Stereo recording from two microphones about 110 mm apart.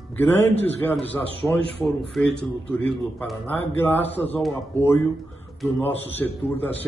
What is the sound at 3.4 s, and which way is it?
Speech, 15° left (ahead or behind).